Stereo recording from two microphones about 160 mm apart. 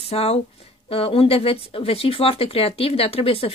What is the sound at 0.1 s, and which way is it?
Speech, 40° left (ahead or behind).